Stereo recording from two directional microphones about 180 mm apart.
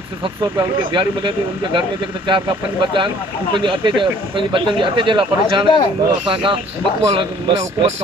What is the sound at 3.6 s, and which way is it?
Speech, 30° right (ahead or behind).